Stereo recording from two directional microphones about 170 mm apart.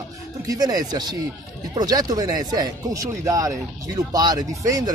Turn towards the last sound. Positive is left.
turn(degrees=-20)  # may be behind; listen again after turning